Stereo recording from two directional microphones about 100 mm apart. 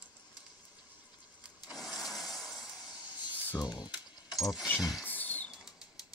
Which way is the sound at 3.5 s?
40° left (ahead or behind).